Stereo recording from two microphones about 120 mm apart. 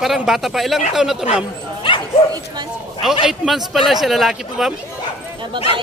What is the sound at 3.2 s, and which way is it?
A man's voice, centre (ahead or behind).